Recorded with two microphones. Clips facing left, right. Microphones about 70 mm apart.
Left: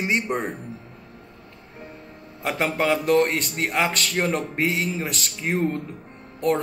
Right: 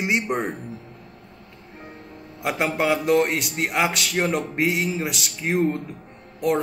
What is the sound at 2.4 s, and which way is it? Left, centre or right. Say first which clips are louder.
Speech: even; centre.